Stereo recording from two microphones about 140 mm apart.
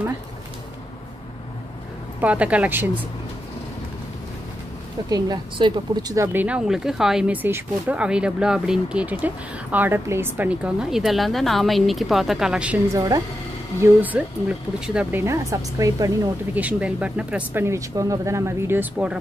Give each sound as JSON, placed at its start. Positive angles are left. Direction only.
{"t": 2.2, "sound": "speech", "side_deg": -10}
{"t": 5.1, "sound": "speech", "side_deg": -30}
{"t": 6.2, "sound": "speech", "side_deg": -10}
{"t": 16.5, "sound": "speech", "side_deg": -10}